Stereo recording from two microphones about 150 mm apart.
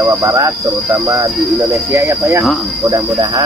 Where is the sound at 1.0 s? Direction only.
25° right (ahead or behind).